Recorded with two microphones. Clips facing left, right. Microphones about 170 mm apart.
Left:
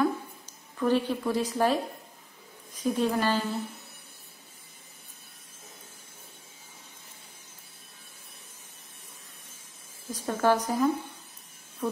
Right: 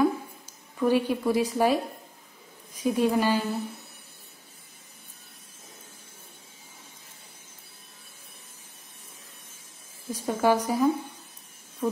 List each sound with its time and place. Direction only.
0.0 s a sound: 10° right (ahead or behind)
2.7 s a woman's voice: 10° right (ahead or behind)
10.1 s a woman's voice: 10° right (ahead or behind)